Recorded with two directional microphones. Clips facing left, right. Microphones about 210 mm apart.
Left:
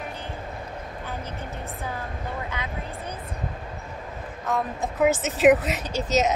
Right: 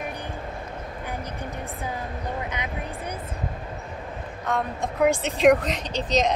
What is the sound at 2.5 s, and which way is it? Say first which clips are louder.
Speech: right 1 dB; 20° right (ahead or behind).